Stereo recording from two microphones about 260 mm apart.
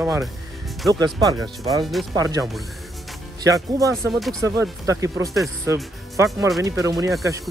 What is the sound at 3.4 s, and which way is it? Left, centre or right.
Speech, centre.